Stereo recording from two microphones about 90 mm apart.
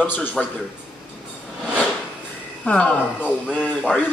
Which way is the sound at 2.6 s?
15° left (ahead or behind).